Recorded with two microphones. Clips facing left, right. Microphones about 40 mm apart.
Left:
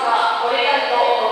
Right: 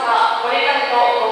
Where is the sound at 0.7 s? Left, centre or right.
Centre.